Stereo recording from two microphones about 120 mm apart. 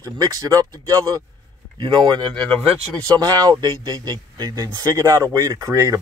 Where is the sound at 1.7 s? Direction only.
40° right (ahead or behind).